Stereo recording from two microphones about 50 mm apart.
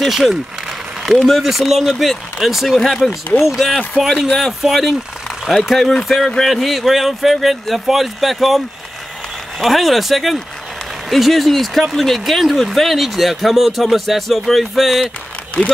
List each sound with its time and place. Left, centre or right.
0.0 s speech: centre
0.7 s a sound: centre
1.4 s speech: centre
15.6 s speech: centre